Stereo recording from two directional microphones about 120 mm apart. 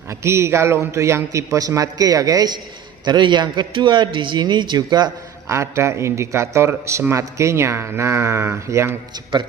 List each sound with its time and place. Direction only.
0.1 s a man's voice: 25° right (ahead or behind)
5.5 s a man's voice: 25° right (ahead or behind)